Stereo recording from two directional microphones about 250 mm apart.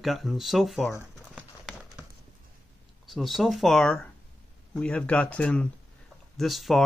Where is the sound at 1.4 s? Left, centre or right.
Centre.